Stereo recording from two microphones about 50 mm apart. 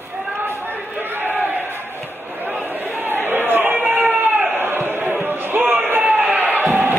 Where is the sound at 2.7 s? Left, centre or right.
Right.